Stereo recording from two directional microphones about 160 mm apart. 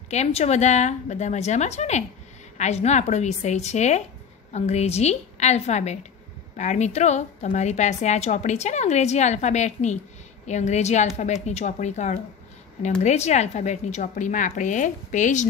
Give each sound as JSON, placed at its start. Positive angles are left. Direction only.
{"t": 0.1, "sound": "a woman's voice", "side_deg": 40}